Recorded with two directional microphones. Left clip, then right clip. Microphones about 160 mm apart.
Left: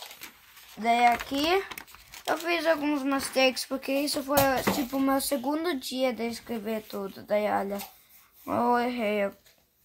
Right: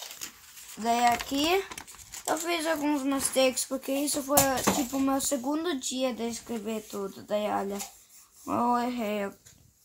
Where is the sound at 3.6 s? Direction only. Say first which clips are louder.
Left 2 dB; 25° left (ahead or behind).